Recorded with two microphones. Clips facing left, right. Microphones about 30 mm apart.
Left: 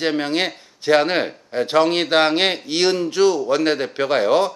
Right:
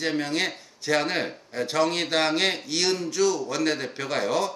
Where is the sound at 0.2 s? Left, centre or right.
Left.